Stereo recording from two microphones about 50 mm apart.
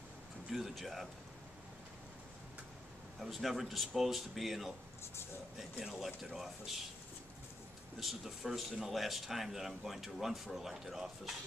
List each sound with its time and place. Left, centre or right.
0.5 s speech: centre
3.2 s speech: centre
5.9 s speech: centre
8.0 s speech: centre